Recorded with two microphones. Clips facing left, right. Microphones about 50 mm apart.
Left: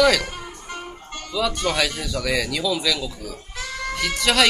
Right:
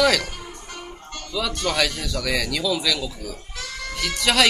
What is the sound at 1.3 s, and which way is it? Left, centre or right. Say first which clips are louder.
Speech: left 1 dB; centre.